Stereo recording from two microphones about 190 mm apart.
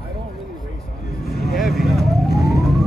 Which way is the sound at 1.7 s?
55° left (ahead or behind).